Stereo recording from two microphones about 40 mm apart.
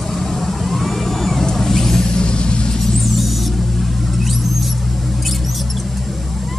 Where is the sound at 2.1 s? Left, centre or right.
Left.